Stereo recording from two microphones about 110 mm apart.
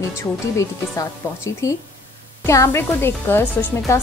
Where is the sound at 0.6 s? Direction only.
30° left (ahead or behind).